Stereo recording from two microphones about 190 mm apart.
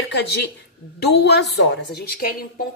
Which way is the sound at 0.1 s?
60° left (ahead or behind).